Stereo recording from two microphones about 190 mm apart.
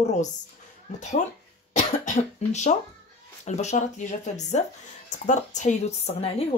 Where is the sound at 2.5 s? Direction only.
35° left (ahead or behind).